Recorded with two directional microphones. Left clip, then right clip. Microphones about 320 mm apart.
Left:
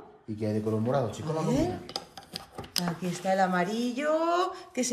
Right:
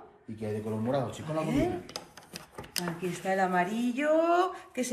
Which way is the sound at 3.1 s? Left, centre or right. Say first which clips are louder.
Left 2 dB; centre.